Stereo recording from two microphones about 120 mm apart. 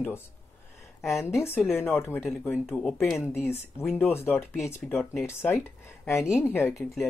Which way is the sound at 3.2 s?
20° left (ahead or behind).